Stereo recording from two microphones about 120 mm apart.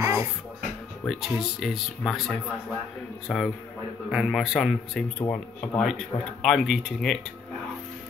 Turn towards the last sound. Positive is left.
turn(degrees=5)  # may be behind; listen again after turning